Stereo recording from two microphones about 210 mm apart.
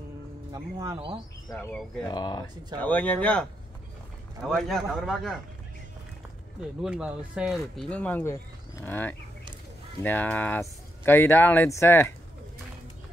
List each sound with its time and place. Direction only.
0.5 s speech: 15° right (ahead or behind)
1.6 s speech: 5° left (ahead or behind)
2.0 s speech: 20° left (ahead or behind)
2.8 s speech: 10° left (ahead or behind)
6.8 s speech: 5° right (ahead or behind); by 12.1 s 10° left (ahead or behind)